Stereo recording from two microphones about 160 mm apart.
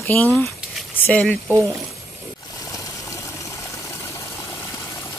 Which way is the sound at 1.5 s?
15° right (ahead or behind).